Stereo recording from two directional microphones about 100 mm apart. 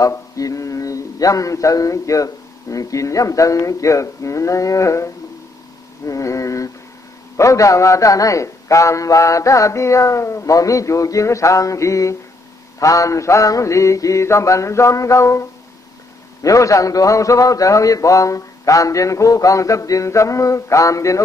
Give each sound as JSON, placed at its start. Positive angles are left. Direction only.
{"t": 0.0, "sound": "mantra", "side_deg": 35}
{"t": 6.0, "sound": "a sound", "side_deg": 35}
{"t": 7.3, "sound": "a man's voice", "side_deg": 30}
{"t": 16.4, "sound": "a man's voice", "side_deg": 35}